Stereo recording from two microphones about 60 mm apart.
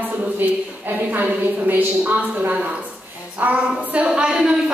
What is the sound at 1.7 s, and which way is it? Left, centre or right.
A woman's voice, right.